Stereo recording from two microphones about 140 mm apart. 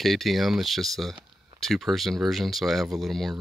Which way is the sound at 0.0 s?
Centre (ahead or behind).